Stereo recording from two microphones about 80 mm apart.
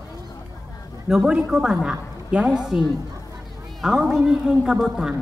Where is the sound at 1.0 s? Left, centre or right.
Centre.